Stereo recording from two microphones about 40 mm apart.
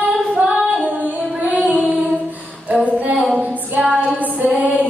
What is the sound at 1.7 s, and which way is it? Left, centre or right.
Music, right.